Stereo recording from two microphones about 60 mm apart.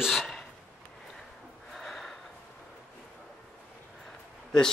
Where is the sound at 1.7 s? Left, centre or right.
Centre.